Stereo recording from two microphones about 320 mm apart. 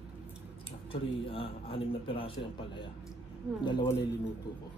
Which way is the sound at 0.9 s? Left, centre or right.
Centre.